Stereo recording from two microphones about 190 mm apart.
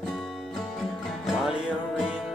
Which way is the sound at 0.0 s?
Centre (ahead or behind).